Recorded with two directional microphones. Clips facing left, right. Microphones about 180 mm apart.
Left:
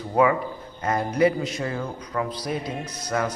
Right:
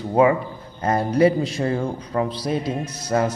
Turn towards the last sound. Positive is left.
turn(degrees=-25)  # may be behind; listen again after turning